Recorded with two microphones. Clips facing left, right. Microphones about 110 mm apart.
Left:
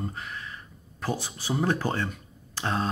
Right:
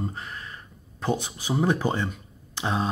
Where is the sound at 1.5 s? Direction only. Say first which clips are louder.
Right 3 dB; 5° right (ahead or behind).